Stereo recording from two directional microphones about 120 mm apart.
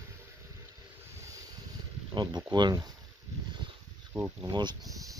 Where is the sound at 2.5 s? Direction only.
35° right (ahead or behind).